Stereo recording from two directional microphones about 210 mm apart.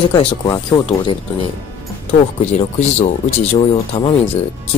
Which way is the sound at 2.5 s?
30° left (ahead or behind).